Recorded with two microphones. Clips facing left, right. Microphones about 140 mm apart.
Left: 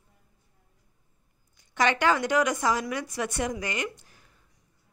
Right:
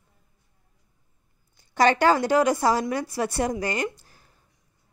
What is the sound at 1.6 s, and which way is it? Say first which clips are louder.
A woman's voice: right 5 dB; 35° right (ahead or behind).